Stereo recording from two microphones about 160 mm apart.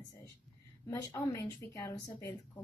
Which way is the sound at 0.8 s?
20° left (ahead or behind).